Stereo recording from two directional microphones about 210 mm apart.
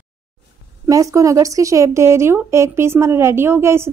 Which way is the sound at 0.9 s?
15° right (ahead or behind).